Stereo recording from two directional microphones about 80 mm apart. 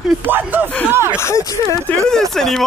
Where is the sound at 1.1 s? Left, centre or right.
Left.